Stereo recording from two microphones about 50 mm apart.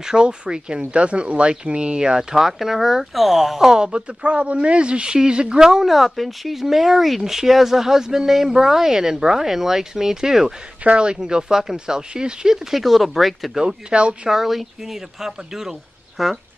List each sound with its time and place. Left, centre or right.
0.0 s speech: centre
2.3 s speech: centre
5.9 s speech: centre
10.8 s speech: right
12.7 s speech: centre
13.6 s speech: centre
14.3 s speech: centre